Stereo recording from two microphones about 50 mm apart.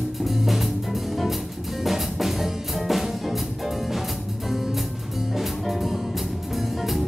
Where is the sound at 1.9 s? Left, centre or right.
Centre.